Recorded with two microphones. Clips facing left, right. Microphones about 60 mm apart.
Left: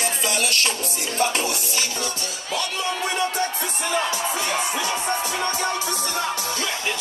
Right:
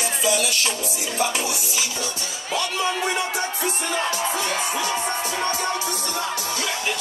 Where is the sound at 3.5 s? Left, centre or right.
Right.